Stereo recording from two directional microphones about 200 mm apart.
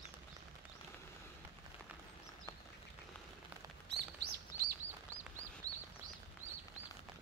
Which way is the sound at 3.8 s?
55° right (ahead or behind).